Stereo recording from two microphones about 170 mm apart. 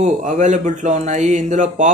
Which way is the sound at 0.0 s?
45° right (ahead or behind).